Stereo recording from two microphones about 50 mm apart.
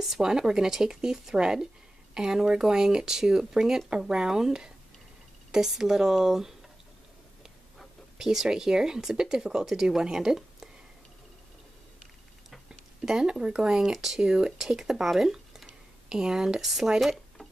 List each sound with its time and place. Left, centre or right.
0.0 s speech: centre
8.2 s speech: centre
12.4 s a sound: centre
13.6 s speech: centre